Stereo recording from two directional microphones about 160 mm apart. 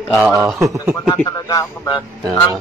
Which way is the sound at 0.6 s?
20° right (ahead or behind).